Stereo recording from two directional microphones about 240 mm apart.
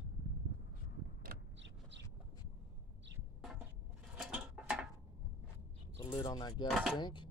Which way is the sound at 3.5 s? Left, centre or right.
Centre.